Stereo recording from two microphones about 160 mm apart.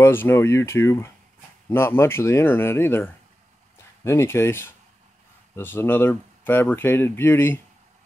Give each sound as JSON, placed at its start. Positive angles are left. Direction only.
{"t": 0.0, "sound": "speech", "side_deg": 15}